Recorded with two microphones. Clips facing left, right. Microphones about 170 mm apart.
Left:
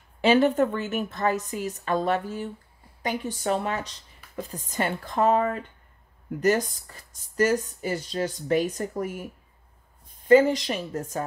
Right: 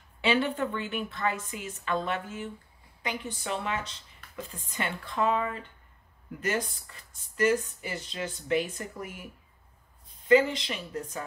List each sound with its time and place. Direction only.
0.2 s speech: 45° left (ahead or behind)